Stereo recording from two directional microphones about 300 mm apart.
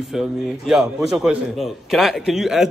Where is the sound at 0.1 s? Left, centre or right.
Centre.